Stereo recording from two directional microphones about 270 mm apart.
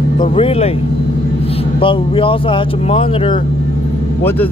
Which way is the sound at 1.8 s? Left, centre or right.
Centre.